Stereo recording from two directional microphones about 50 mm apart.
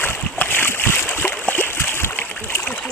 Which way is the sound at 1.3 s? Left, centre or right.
Left.